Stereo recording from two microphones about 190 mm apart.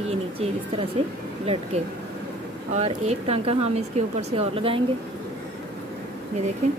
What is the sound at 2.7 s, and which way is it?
A woman's voice, 35° right (ahead or behind).